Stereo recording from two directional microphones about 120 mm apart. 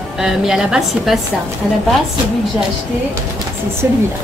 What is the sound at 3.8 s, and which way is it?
Speech, 20° right (ahead or behind).